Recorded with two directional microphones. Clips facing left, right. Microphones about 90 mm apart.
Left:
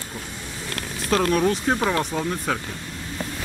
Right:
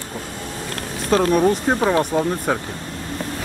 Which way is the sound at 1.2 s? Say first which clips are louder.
Right 3 dB; 35° right (ahead or behind).